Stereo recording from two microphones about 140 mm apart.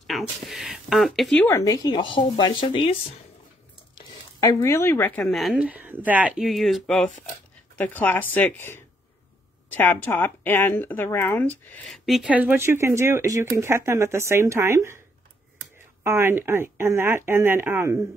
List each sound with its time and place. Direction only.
0.0 s speech: centre (ahead or behind)
1.4 s speech: 20° left (ahead or behind); by 3.0 s 40° left (ahead or behind)
3.9 s speech: 25° left (ahead or behind)
5.3 s speech: centre (ahead or behind)
5.7 s speech: 10° right (ahead or behind)
7.7 s speech: 10° left (ahead or behind)
11.9 s speech: 5° right (ahead or behind); by 15.0 s 20° right (ahead or behind)
16.0 s speech: 15° right (ahead or behind)